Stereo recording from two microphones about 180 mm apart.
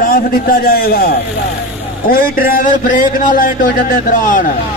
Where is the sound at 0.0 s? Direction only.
55° left (ahead or behind).